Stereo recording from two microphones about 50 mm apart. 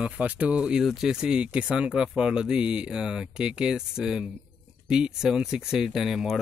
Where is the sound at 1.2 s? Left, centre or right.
Centre.